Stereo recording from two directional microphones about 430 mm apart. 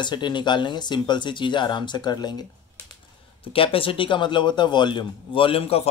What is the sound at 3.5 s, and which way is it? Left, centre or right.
Speech, centre.